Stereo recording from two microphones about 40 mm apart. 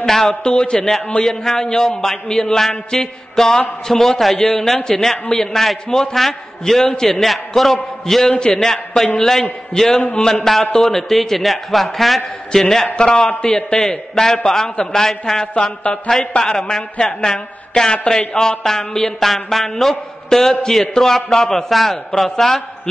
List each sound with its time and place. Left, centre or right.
0.0 s a man's voice: centre
0.3 s a man's voice: left
12.9 s a man's voice: left
14.2 s a man's voice: centre
15.5 s a man's voice: left
17.0 s a woman's voice: centre